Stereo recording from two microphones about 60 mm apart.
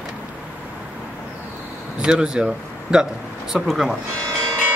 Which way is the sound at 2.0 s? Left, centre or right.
Centre.